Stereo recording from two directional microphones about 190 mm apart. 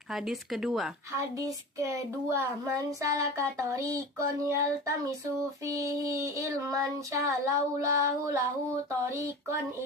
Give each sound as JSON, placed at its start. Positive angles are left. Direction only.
{"t": 0.1, "sound": "speech", "side_deg": 0}
{"t": 1.1, "sound": "speech", "side_deg": -15}